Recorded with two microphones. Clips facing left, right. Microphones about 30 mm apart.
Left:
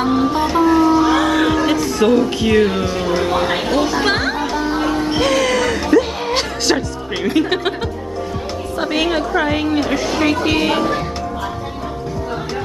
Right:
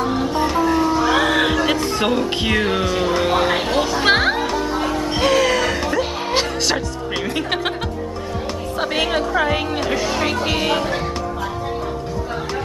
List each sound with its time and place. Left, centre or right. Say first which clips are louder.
0.1 s music: left 3 dB; centre
1.1 s music: left 2 dB; centre
2.0 s a woman's voice: left 7 dB; centre
4.0 s music: right 1 dB; right
4.5 s music: left 2 dB; centre
5.1 s a woman's voice: right 1 dB; centre
5.8 s music: left 6 dB; centre
7.3 s a woman's voice: left 7 dB; centre
8.7 s a woman's voice: left 2 dB; centre